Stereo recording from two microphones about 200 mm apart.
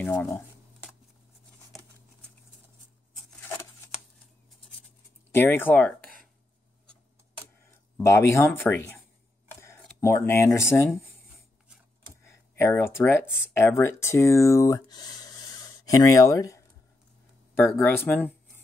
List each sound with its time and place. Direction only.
0.0 s speech: 10° left (ahead or behind)
5.3 s speech: 10° left (ahead or behind)
8.0 s speech: 15° left (ahead or behind)
12.2 s a sound: 15° left (ahead or behind)
13.5 s speech: 10° left (ahead or behind)
17.7 s speech: 10° left (ahead or behind)